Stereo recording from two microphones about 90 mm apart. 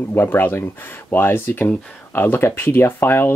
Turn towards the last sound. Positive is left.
turn(degrees=25)  # may be behind; listen again after turning